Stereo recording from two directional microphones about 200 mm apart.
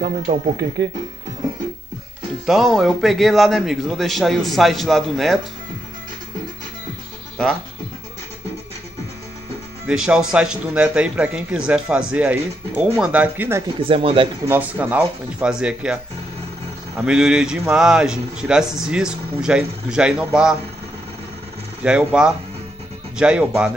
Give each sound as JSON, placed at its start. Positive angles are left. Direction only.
{"t": 0.0, "sound": "speech", "side_deg": -55}
{"t": 2.4, "sound": "a man's voice", "side_deg": 0}
{"t": 9.8, "sound": "a man's voice", "side_deg": -5}
{"t": 13.8, "sound": "speech", "side_deg": -25}
{"t": 14.5, "sound": "speech", "side_deg": -5}
{"t": 17.0, "sound": "a man's voice", "side_deg": -5}
{"t": 21.8, "sound": "a man's voice", "side_deg": -5}